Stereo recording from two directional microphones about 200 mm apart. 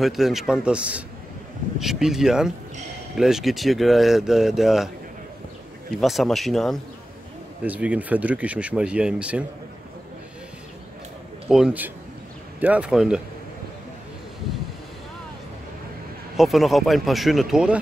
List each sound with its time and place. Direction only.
0.0 s speech: centre (ahead or behind)
5.9 s speech: centre (ahead or behind)
11.4 s speech: 5° right (ahead or behind)
16.3 s speech: centre (ahead or behind)